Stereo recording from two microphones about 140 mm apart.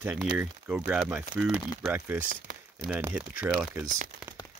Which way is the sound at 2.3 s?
90° right.